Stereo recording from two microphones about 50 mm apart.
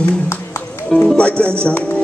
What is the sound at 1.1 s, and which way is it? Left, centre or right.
Music, left.